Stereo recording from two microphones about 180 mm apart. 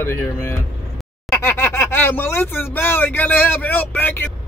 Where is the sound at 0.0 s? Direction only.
15° left (ahead or behind).